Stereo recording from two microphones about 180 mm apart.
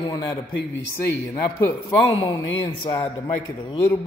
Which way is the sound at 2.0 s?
25° left (ahead or behind).